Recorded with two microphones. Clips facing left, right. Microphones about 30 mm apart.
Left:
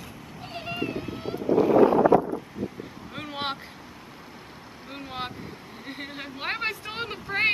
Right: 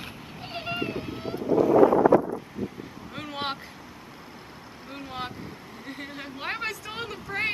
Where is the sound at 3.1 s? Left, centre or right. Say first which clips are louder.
Even; centre.